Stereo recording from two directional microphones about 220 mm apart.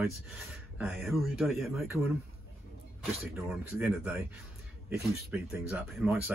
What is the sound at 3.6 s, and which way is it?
Speech, 5° right (ahead or behind).